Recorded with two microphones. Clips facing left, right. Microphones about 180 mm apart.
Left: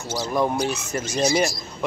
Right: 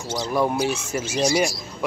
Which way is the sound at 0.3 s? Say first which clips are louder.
Right 1 dB; 5° right (ahead or behind).